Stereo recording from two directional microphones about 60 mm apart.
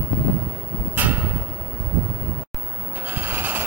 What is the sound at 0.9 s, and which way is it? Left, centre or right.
Vehicle, right.